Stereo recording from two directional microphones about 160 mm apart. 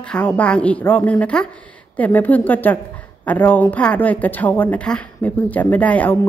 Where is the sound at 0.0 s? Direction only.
10° left (ahead or behind).